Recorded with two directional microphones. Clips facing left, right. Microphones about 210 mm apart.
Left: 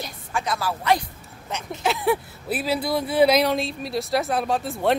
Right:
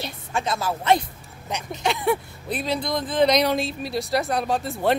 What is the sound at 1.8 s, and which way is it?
Speech, centre (ahead or behind).